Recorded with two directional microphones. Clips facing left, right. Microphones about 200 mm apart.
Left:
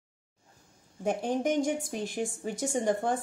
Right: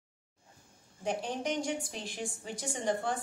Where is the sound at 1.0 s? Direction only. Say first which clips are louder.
Left 6 dB; 50° left (ahead or behind).